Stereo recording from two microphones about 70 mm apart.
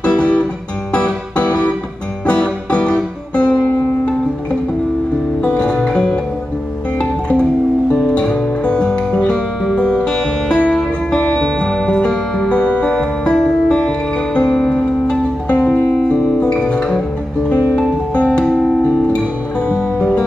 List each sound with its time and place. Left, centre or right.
0.0 s music: centre
5.4 s music: centre
7.0 s music: centre
20.0 s music: centre